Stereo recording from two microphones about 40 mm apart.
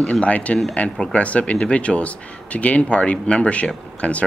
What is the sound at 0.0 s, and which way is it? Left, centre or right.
Speech, left.